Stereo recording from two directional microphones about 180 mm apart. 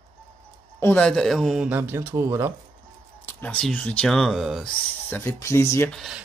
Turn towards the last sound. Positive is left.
turn(degrees=0)  # may be behind; listen again after turning